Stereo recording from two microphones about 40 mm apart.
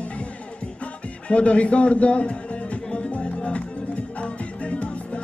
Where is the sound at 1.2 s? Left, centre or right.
Left.